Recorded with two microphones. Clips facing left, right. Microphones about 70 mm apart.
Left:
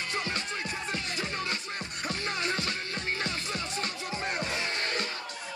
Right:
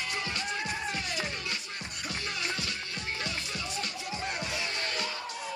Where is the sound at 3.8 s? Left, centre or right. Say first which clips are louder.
Left 2 dB; left.